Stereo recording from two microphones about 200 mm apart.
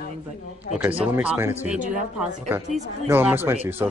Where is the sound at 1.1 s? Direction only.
10° right (ahead or behind).